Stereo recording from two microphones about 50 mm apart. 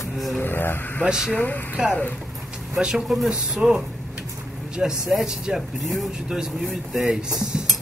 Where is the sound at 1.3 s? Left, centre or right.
Left.